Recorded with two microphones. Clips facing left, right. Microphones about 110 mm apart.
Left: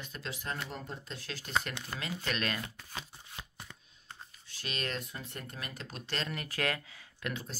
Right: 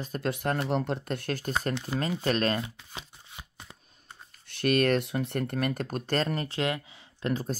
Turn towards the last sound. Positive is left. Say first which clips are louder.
# right 11 dB
turn(degrees=-40)  # may be behind; listen again after turning